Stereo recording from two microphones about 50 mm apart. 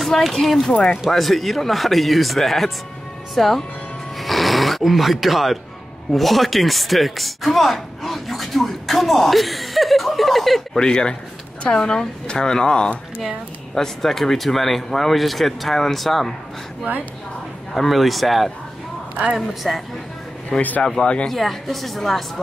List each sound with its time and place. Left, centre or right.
0.0 s speech: centre
4.2 s music: centre
6.1 s speech: centre
10.8 s a woman's voice: centre
13.7 s speech: centre
17.7 s speech: centre
20.8 s speech: centre
21.3 s speech: centre